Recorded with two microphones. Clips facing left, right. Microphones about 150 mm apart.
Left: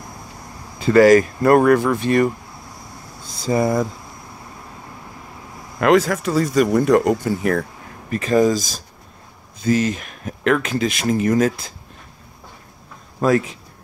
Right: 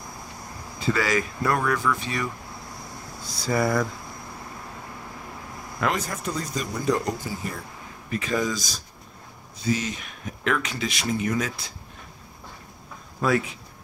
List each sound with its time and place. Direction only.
0.8 s speech: 50° left (ahead or behind)
3.3 s speech: 20° left (ahead or behind)
5.8 s speech: 85° left
8.1 s speech: 45° left (ahead or behind)
13.2 s speech: 40° left (ahead or behind)